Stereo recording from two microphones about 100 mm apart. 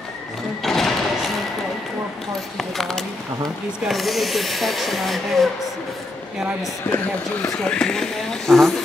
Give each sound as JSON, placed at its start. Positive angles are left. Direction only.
{"t": 0.6, "sound": "music", "side_deg": 5}
{"t": 2.5, "sound": "speech", "side_deg": 0}
{"t": 6.8, "sound": "speech", "side_deg": 20}
{"t": 7.6, "sound": "speech", "side_deg": 10}